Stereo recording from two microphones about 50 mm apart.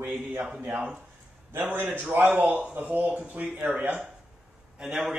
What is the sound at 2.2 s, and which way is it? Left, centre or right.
Speech, right.